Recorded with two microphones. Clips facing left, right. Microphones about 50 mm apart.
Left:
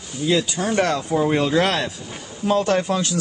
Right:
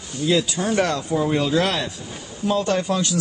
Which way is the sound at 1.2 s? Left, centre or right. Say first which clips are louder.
Left 2 dB; left.